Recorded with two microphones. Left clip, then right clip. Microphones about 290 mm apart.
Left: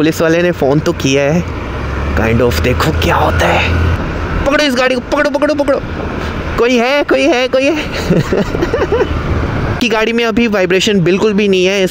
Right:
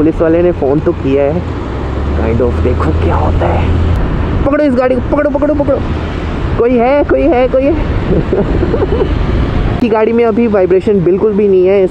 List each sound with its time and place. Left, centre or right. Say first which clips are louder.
0.0 s speech: right 2 dB; left
3.1 s a man's voice: left 4 dB; left
9.8 s a man's voice: right 3 dB; left